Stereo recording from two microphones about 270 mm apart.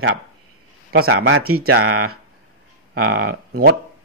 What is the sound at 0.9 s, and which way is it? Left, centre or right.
Speech, right.